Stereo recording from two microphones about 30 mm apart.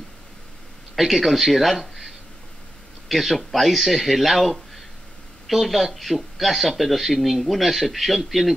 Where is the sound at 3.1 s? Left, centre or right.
Centre.